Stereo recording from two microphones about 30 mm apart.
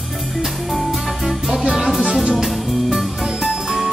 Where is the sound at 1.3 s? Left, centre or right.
Centre.